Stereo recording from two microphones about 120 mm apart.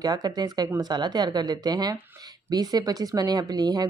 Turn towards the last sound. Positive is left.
turn(degrees=-35)  # may be behind; listen again after turning